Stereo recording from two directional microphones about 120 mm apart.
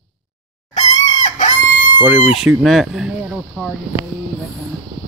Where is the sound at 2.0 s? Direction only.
10° right (ahead or behind).